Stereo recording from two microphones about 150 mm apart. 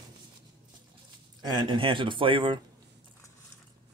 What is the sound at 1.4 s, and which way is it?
A man's voice, 30° right (ahead or behind).